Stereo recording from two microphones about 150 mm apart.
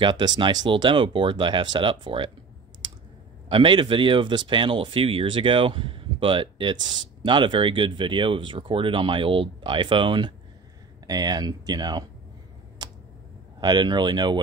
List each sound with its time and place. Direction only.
0.0 s speech: 30° right (ahead or behind)
3.4 s speech: 35° right (ahead or behind)
12.8 s a sound: 25° right (ahead or behind)
13.6 s speech: 30° right (ahead or behind)